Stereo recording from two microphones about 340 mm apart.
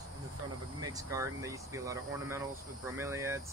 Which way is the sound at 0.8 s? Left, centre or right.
Centre.